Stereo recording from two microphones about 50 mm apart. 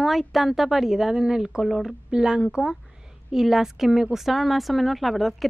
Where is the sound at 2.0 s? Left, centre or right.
Centre.